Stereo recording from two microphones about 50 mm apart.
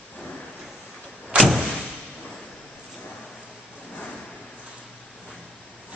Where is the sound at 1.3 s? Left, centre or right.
Right.